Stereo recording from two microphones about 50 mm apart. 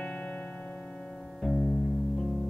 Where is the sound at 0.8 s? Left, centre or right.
Centre.